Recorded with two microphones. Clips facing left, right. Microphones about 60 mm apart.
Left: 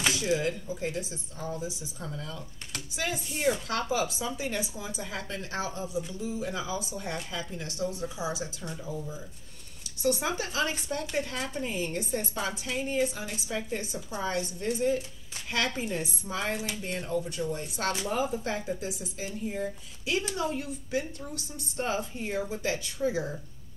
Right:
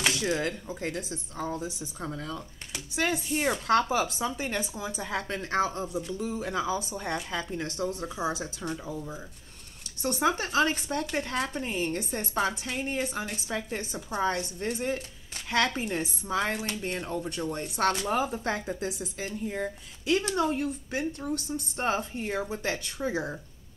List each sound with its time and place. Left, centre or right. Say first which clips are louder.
0.0 s speech: even; right
1.4 s speech: right 2 dB; right
3.0 s speech: right 4 dB; right